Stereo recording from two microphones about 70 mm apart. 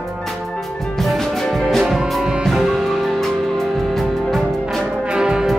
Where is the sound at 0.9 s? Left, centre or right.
Centre.